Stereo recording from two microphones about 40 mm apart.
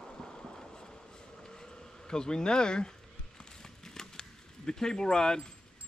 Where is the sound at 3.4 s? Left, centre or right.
Centre.